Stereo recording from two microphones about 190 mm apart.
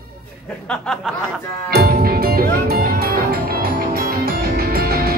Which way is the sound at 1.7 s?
55° right (ahead or behind).